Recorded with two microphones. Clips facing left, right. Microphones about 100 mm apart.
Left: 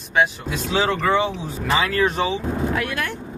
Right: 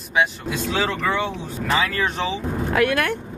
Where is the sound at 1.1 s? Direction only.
15° left (ahead or behind).